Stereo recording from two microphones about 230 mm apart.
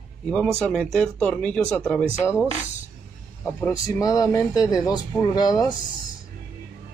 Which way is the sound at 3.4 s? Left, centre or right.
Centre.